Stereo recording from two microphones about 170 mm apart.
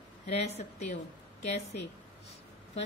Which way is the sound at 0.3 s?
40° left (ahead or behind).